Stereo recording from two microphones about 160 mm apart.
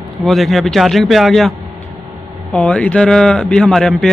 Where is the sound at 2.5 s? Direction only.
10° left (ahead or behind).